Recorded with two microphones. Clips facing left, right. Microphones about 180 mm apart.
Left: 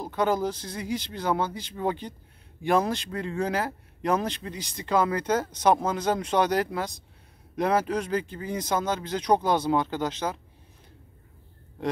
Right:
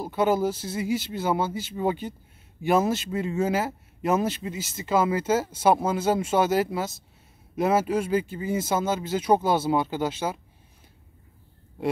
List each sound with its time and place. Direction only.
0.0 s speech: 5° right (ahead or behind)
11.8 s speech: 10° right (ahead or behind)